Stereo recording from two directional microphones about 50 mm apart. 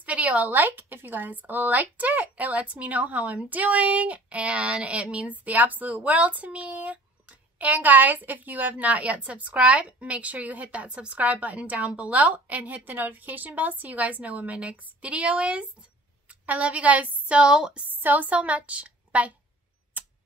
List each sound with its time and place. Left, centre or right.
0.0 s a woman's voice: right
17.4 s speech: centre
17.8 s a woman's voice: right
19.9 s a sound: right